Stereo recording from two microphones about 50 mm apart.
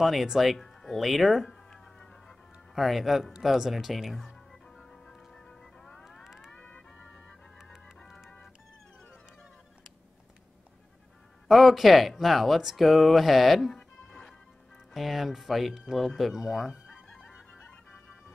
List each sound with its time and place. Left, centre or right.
0.0 s speech: centre
1.5 s a sound: centre
2.7 s speech: centre
4.5 s music: centre
6.0 s music: centre
6.5 s music: left
11.4 s speech: centre
15.0 s speech: centre